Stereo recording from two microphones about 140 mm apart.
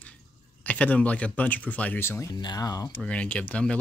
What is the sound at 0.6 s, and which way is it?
Speech, 10° left (ahead or behind).